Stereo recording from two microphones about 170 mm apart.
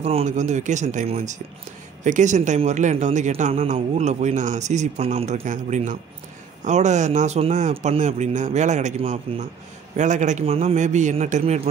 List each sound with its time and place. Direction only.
0.0 s speech: 40° right (ahead or behind)